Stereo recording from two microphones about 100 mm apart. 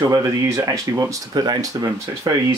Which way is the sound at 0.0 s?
35° right (ahead or behind).